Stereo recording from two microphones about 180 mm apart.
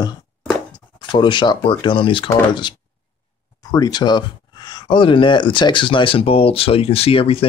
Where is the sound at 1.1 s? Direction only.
25° left (ahead or behind).